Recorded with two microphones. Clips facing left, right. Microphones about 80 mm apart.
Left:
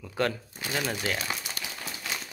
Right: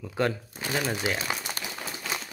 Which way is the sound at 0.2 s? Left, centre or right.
Right.